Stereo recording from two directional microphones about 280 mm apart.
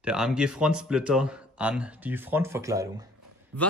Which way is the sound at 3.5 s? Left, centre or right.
Right.